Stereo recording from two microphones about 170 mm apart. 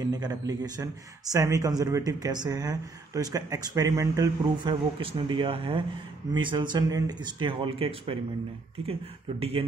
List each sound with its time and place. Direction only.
0.0 s speech: 20° right (ahead or behind)
5.0 s speech: 30° right (ahead or behind)
9.4 s speech: 35° right (ahead or behind)